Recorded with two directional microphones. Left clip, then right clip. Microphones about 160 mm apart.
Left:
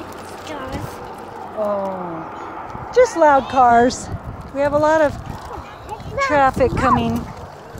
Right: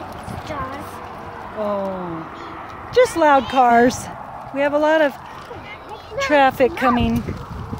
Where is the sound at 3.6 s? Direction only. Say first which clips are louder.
Left 2 dB; 35° right (ahead or behind).